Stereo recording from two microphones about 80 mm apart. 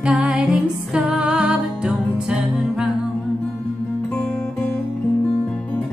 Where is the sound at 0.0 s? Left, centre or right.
Centre.